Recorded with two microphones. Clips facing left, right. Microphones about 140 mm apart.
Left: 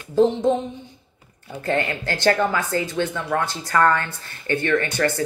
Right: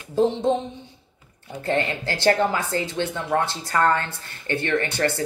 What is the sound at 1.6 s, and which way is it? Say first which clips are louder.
Speech: left 1 dB; 25° right (ahead or behind).